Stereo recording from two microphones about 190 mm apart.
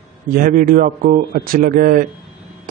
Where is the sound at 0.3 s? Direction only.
45° right (ahead or behind).